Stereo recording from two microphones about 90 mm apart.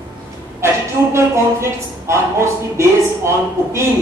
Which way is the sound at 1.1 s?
30° right (ahead or behind).